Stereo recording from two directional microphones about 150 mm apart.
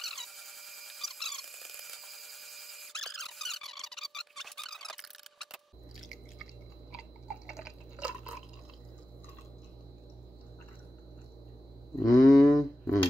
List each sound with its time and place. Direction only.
0.0 s squeak: centre (ahead or behind)
7.4 s drip: 5° right (ahead or behind)
12.0 s a sound: 25° left (ahead or behind)